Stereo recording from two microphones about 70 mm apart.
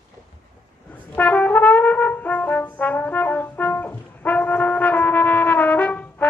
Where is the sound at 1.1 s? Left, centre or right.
Left.